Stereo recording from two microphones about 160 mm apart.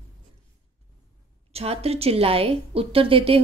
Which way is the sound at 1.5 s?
40° right (ahead or behind).